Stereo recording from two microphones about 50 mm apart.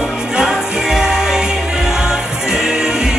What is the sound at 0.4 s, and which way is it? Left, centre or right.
Music, centre.